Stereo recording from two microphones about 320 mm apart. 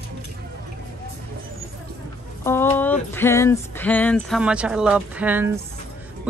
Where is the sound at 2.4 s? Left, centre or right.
Centre.